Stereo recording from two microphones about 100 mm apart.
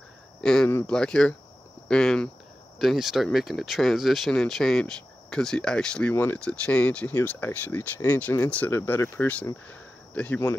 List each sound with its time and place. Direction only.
0.4 s speech: 5° left (ahead or behind)
2.8 s speech: centre (ahead or behind)
6.1 s speech: 20° left (ahead or behind)
9.7 s a sound: 15° left (ahead or behind)